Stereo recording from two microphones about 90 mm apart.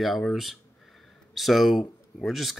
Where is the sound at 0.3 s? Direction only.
Centre (ahead or behind).